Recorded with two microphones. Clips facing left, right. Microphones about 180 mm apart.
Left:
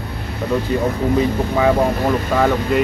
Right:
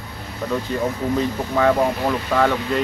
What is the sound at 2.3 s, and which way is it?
Speech, 5° left (ahead or behind).